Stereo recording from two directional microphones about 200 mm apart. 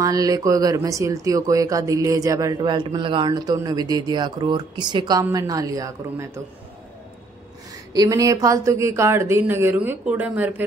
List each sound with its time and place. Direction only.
0.0 s speech: 20° right (ahead or behind)
7.9 s speech: 20° right (ahead or behind)